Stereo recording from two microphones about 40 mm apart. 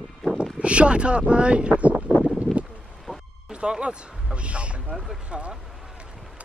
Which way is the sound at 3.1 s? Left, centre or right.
Right.